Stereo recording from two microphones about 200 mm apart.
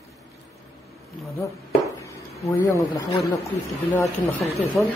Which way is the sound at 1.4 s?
15° left (ahead or behind).